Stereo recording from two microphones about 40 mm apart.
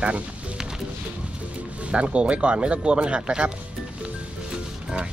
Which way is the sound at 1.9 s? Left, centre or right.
Right.